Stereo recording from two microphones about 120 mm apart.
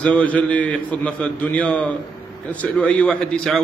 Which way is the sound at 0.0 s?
10° left (ahead or behind).